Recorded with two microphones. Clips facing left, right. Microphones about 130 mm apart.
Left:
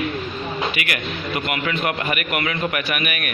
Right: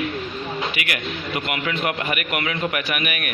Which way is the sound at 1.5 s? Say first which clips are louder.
Left 1 dB; 15° right (ahead or behind).